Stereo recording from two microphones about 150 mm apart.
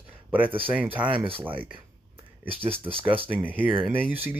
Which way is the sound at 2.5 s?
40° right (ahead or behind).